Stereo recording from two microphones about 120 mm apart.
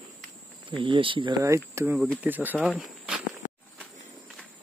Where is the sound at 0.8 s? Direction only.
45° right (ahead or behind).